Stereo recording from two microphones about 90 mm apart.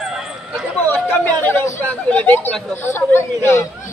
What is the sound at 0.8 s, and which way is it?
Speech, 20° left (ahead or behind).